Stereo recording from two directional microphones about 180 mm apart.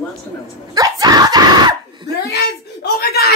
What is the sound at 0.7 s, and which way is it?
Screaming, 20° right (ahead or behind).